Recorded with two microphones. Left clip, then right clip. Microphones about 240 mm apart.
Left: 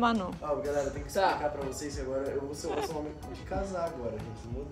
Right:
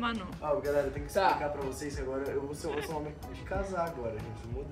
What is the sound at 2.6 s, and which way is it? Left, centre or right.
Speech, centre.